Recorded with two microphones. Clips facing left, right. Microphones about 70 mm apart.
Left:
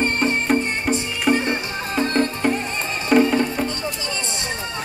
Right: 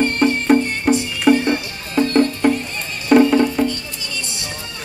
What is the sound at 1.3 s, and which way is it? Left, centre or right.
Music, left.